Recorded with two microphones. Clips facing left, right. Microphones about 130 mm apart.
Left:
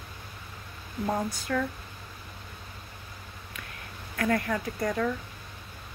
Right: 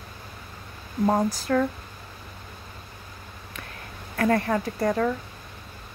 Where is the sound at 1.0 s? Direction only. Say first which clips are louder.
Right 7 dB; 70° right (ahead or behind).